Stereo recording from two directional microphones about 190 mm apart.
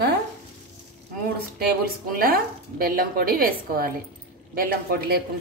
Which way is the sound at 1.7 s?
50° right (ahead or behind).